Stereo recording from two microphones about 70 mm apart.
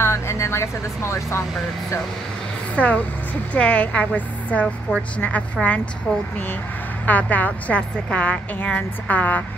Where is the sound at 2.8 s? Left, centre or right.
Centre.